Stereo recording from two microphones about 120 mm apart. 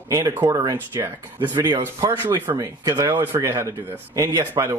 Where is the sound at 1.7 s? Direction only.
30° right (ahead or behind).